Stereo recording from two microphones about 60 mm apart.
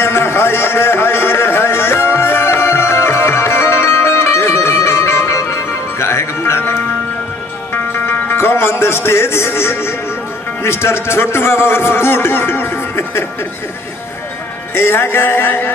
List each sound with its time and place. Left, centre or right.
0.0 s a sound: left
7.7 s music: left
10.6 s a man's voice: left
14.7 s speech: left